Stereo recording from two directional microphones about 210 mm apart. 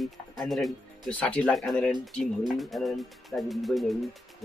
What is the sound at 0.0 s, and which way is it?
Speech, centre (ahead or behind).